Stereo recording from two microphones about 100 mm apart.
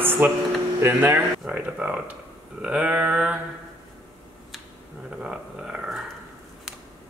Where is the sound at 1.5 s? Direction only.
10° right (ahead or behind).